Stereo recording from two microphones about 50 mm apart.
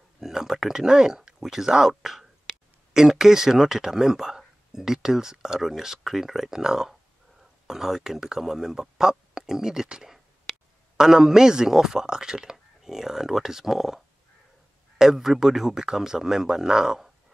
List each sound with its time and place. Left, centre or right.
0.2 s speech: centre
9.3 s a sound: centre
11.0 s speech: centre